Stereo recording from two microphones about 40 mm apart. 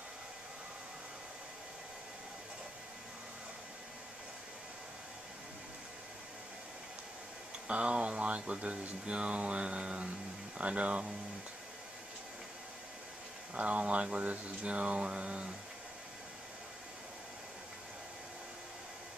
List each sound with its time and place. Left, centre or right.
7.6 s speech: right
13.6 s speech: right